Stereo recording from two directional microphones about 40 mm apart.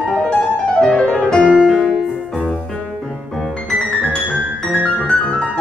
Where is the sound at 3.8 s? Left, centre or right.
Left.